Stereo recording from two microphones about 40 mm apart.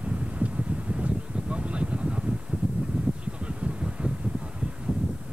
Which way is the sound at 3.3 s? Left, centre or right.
Right.